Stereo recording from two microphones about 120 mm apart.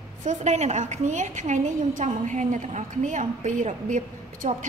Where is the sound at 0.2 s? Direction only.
85° right.